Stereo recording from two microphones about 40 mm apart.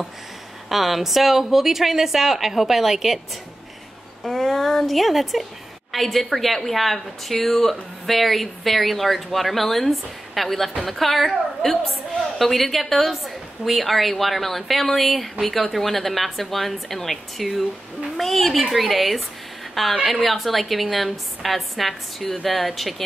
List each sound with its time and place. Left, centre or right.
0.7 s a woman's voice: centre
4.2 s a woman's voice: centre